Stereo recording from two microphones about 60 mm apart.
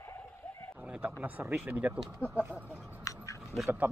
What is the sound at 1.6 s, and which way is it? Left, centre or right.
Speech, right.